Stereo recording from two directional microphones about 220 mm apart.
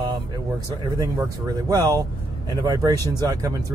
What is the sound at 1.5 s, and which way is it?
Speech, 15° right (ahead or behind).